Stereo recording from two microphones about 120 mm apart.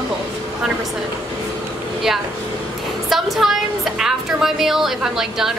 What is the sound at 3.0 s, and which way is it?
A woman's voice, centre (ahead or behind).